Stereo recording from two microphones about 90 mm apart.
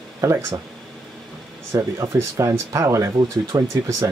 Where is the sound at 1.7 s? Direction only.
30° right (ahead or behind).